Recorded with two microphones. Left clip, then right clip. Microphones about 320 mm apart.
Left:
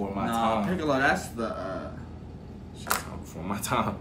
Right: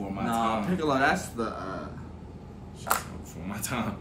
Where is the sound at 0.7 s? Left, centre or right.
Centre.